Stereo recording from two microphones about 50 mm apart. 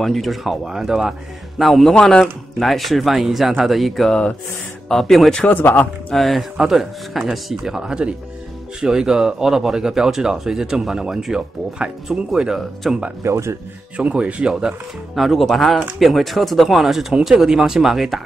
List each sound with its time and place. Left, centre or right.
0.0 s speech: centre
1.6 s speech: centre
2.0 s speech: centre
2.6 s speech: centre
5.5 s speech: left
6.1 s speech: centre
13.2 s speech: right
13.9 s speech: right
15.1 s speech: centre